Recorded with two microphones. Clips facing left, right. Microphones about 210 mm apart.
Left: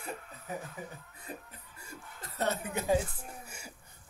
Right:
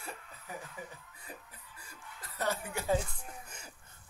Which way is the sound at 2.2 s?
25° left (ahead or behind).